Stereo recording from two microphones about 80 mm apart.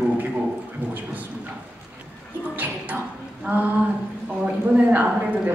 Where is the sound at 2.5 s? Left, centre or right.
Right.